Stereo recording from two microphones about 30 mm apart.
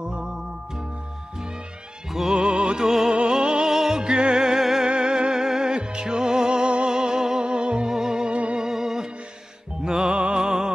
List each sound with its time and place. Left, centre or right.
0.0 s music: right
2.3 s music: right
2.8 s music: centre
3.1 s music: right
3.6 s music: centre
4.0 s music: right
4.4 s music: centre
4.8 s music: right
7.4 s music: right
7.9 s music: centre
8.3 s music: right
8.5 s music: centre